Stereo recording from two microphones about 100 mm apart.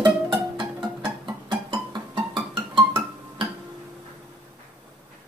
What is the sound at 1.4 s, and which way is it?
Music, 55° right (ahead or behind).